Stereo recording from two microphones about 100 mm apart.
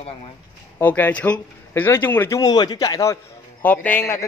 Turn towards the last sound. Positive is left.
turn(degrees=20)  # may be behind; listen again after turning